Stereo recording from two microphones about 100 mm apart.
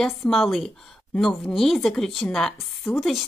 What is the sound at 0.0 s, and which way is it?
A woman's voice, centre (ahead or behind).